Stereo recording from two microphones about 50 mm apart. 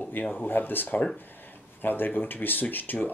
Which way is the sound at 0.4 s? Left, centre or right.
Left.